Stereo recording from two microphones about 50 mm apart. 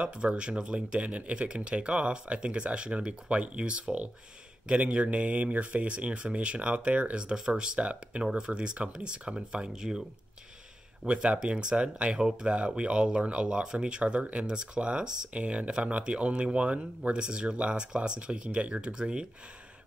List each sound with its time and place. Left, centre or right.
0.0 s speech: right
11.1 s speech: centre